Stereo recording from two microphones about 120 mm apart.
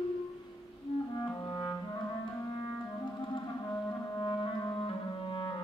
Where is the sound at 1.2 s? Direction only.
30° left (ahead or behind).